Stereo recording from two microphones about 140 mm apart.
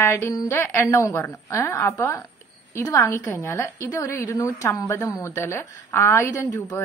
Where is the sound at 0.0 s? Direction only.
20° left (ahead or behind).